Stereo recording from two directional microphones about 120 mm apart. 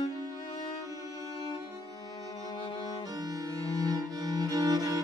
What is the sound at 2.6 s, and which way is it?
Music, 45° left (ahead or behind).